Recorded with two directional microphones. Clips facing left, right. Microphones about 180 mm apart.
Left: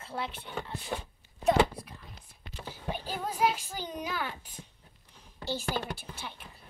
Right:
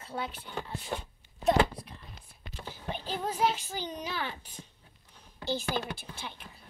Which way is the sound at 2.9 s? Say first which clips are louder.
Right 1 dB; 10° left (ahead or behind).